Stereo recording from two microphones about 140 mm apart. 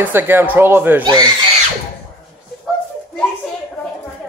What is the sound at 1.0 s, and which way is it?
Speech, 30° right (ahead or behind).